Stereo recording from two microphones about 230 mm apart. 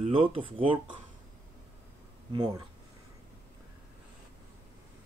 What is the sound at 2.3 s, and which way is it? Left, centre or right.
Speech, centre.